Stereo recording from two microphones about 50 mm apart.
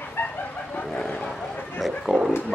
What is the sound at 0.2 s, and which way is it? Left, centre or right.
Chicken, left.